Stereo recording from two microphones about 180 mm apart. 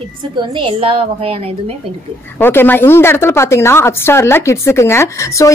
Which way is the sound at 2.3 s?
10° left (ahead or behind).